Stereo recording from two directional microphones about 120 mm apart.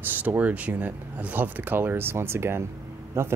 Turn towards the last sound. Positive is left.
turn(degrees=-20)  # may be behind; listen again after turning